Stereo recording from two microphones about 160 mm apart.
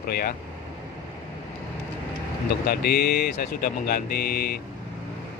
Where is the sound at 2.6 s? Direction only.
80° left.